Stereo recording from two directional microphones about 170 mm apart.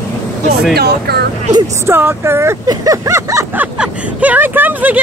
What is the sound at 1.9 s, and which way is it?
Speech, 15° right (ahead or behind).